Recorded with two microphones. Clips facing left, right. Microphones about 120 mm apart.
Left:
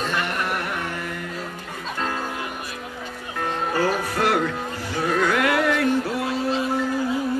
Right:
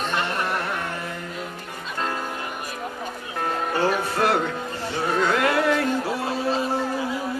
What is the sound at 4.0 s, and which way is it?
Music, 25° right (ahead or behind).